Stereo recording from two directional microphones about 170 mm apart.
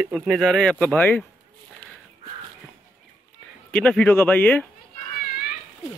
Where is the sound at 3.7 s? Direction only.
5° left (ahead or behind).